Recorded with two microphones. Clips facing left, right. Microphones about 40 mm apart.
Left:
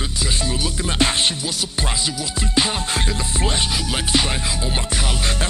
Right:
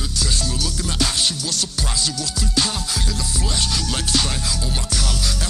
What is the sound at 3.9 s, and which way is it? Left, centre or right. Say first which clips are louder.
Music: left 3 dB; left.